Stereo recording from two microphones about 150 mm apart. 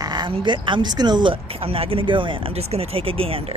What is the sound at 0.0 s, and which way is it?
Speech, 30° right (ahead or behind).